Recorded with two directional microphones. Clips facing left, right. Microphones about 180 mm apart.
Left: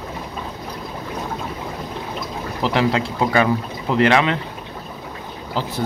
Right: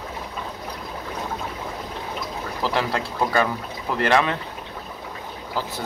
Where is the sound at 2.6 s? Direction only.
20° left (ahead or behind).